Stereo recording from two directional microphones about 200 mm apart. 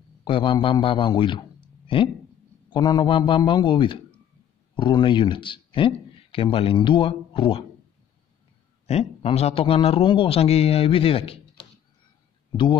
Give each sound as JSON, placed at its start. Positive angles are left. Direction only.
{"t": 0.2, "sound": "a man's voice", "side_deg": 25}
{"t": 8.8, "sound": "speech", "side_deg": 30}